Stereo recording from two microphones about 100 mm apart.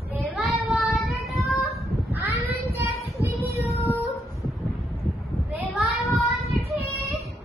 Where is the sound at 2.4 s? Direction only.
20° right (ahead or behind).